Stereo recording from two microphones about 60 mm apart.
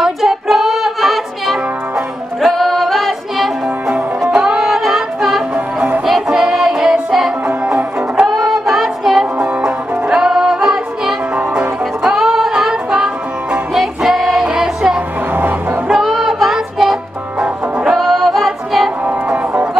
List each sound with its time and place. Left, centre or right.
0.0 s music: centre
2.4 s singing: centre
4.2 s music: centre
4.6 s music: centre
7.4 s music: centre
8.4 s music: centre
11.3 s music: centre
15.3 s music: right
15.9 s music: centre
17.9 s music: centre
19.0 s music: right